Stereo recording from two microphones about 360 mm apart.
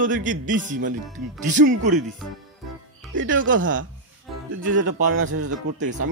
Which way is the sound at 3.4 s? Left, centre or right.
Right.